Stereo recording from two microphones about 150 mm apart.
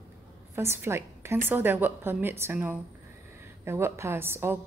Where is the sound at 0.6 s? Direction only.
15° right (ahead or behind).